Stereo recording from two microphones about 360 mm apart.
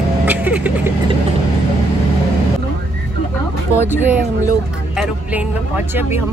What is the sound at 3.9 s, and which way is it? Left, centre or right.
Speech, centre.